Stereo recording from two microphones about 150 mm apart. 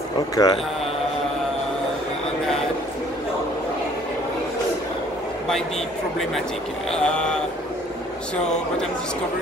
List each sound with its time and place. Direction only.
0.4 s speech: 25° left (ahead or behind)
6.9 s speech: 5° left (ahead or behind)